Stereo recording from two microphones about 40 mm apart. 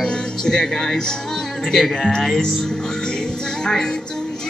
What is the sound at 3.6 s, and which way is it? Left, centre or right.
Music, centre.